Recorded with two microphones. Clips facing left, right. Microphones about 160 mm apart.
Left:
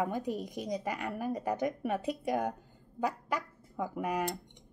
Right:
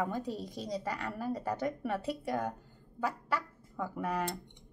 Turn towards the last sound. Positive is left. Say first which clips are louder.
# left 2 dB
turn(degrees=15)  # may be behind; listen again after turning